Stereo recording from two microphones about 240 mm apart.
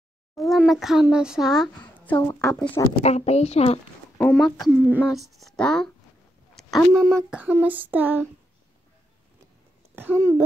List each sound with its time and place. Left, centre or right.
0.4 s speech: centre
2.1 s a woman's voice: centre
2.7 s a woman's voice: left
4.2 s speech: centre
6.5 s a sound: centre
9.9 s a sound: centre